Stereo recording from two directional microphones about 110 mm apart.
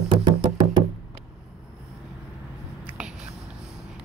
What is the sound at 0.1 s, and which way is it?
Music, 45° right (ahead or behind).